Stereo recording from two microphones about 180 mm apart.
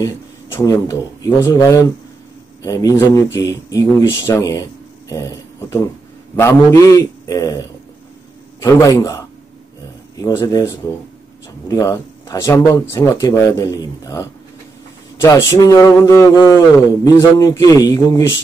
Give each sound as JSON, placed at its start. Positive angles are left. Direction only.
{"t": 0.6, "sound": "speech", "side_deg": 15}
{"t": 8.6, "sound": "speech", "side_deg": 15}
{"t": 15.2, "sound": "speech", "side_deg": 20}